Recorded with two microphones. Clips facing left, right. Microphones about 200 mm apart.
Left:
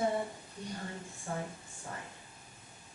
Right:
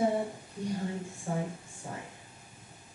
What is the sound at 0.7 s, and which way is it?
Speech, 10° right (ahead or behind).